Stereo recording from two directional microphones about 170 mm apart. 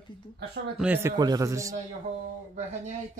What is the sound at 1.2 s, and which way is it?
Speech, 20° right (ahead or behind).